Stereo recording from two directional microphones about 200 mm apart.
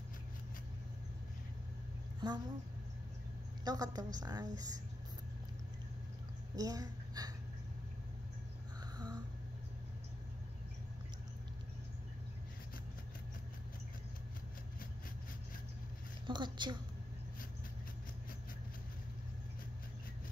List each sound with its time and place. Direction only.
2.2 s a woman's voice: 20° right (ahead or behind)
3.6 s a woman's voice: 20° right (ahead or behind)
6.5 s a woman's voice: 20° right (ahead or behind)
8.9 s a sound: 20° right (ahead or behind)
16.3 s a woman's voice: 20° right (ahead or behind)